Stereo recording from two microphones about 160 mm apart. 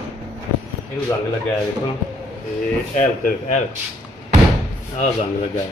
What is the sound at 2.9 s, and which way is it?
Speech, 55° left (ahead or behind).